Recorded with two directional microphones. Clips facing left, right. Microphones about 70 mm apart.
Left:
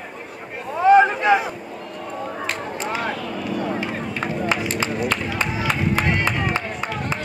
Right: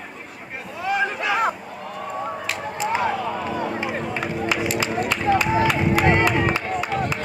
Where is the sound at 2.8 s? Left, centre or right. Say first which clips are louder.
Right 6 dB; centre.